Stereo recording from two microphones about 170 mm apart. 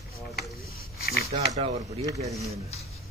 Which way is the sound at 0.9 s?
65° left (ahead or behind).